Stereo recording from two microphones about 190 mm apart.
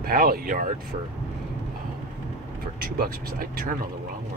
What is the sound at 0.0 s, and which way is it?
Speech, 50° right (ahead or behind).